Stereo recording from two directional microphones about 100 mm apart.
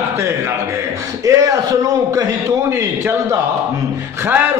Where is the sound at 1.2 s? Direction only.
35° right (ahead or behind).